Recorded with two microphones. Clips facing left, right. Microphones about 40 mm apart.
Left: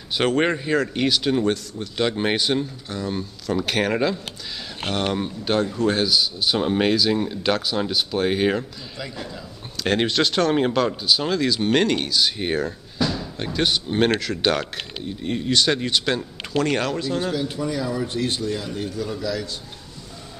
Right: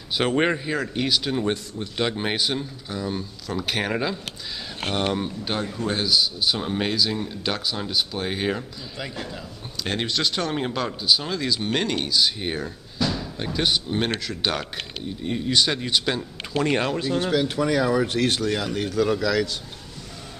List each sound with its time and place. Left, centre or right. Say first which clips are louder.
0.3 s speech: left 2 dB; centre
2.2 s speech: left 4 dB; centre
7.5 s speech: left 3 dB; centre
8.9 s a man's voice: even; centre
10.0 s speech: left 4 dB; centre
16.5 s a man's voice: left 1 dB; centre
17.3 s speech: right 3 dB; right